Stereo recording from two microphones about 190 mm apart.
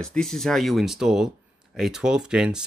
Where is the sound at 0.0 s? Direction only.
5° left (ahead or behind).